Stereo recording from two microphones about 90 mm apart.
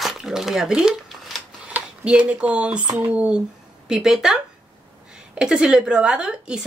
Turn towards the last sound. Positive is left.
turn(degrees=-10)  # may be behind; listen again after turning